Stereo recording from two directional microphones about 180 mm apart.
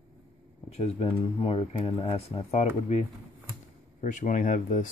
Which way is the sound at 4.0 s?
45° left (ahead or behind).